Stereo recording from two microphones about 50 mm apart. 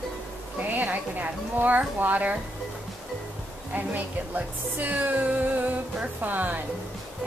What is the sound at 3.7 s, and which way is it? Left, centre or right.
A woman's voice, right.